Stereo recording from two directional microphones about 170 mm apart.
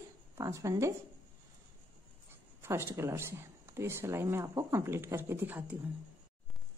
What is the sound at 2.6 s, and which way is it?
Speech, 15° right (ahead or behind).